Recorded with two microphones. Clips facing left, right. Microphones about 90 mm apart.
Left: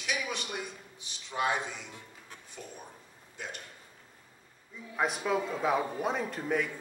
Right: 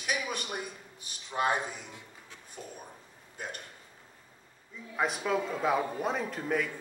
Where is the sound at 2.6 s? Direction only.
30° right (ahead or behind).